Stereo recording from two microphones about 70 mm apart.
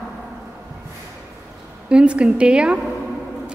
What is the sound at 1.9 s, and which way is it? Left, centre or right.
Speech, centre.